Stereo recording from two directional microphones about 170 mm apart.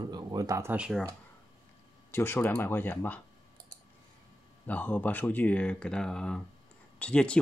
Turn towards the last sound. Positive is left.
turn(degrees=5)  # may be behind; listen again after turning